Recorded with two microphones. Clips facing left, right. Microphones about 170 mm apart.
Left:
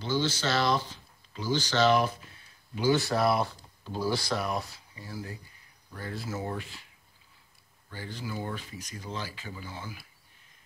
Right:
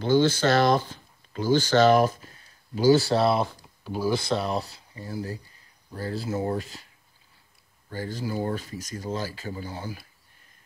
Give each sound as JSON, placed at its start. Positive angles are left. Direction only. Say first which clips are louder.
{"t": 0.0, "sound": "speech", "louder": "right 8 dB", "side_deg": -55}
{"t": 7.9, "sound": "speech", "louder": "right 7 dB", "side_deg": -40}